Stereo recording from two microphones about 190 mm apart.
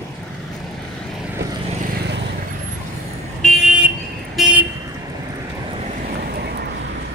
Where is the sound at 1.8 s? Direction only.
60° right (ahead or behind).